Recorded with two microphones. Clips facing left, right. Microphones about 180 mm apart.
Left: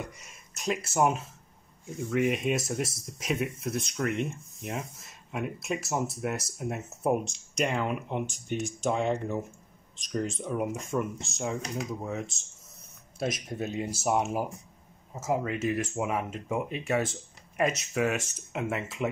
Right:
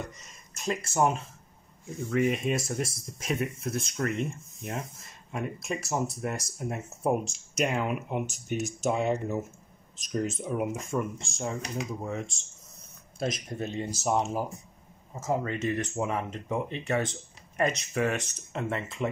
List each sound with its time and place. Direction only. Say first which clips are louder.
0.0 s speech: even; 10° left (ahead or behind)